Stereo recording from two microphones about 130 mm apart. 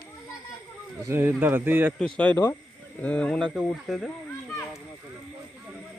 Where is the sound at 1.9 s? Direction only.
5° left (ahead or behind).